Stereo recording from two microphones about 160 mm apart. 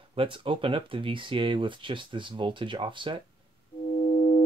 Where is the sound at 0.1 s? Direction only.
35° right (ahead or behind).